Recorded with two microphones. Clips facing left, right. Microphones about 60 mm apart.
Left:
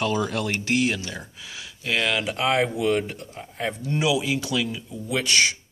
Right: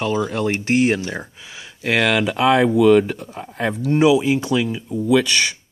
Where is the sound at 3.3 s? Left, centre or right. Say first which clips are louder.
Right 5 dB; right.